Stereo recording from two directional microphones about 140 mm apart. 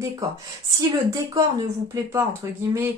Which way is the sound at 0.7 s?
25° right (ahead or behind).